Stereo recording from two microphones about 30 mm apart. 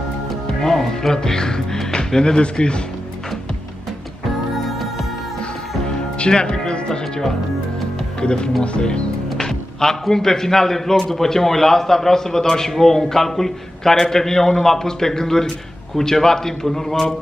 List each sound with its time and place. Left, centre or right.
0.6 s a man's voice: centre; by 2.8 s left
4.6 s music: centre
6.1 s speech: left
9.4 s a man's voice: centre